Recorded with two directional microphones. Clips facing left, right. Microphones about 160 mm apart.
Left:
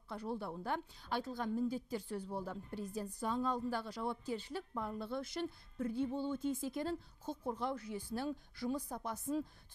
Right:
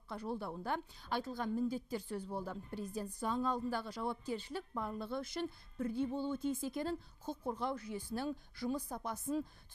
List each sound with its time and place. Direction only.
0.1 s a woman's voice: 25° left (ahead or behind)